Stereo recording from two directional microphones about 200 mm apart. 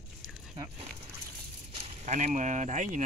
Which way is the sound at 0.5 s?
25° right (ahead or behind).